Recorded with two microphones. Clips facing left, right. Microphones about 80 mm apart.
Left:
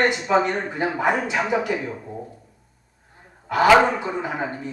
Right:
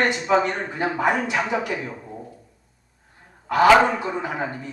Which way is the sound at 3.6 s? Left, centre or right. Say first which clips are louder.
Even; centre.